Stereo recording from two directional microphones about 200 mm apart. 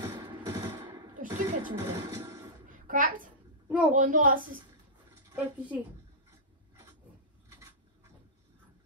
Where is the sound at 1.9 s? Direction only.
15° right (ahead or behind).